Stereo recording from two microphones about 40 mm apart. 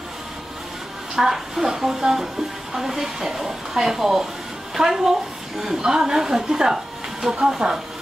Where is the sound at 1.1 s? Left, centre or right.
Centre.